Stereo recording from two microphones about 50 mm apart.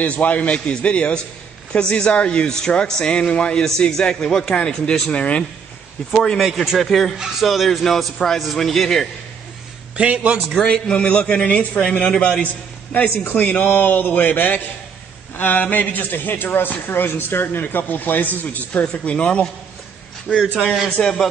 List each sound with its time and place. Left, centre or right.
0.0 s a man's voice: left
3.6 s a man's voice: centre
5.1 s a man's voice: left
6.4 s speech: centre
6.8 s a man's voice: centre
9.9 s a man's voice: right
10.7 s a man's voice: left
13.2 s a man's voice: left
20.6 s a man's voice: centre
21.0 s a man's voice: centre